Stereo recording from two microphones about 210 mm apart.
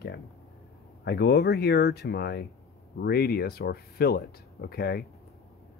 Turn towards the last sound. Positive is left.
turn(degrees=50)  # may be behind; listen again after turning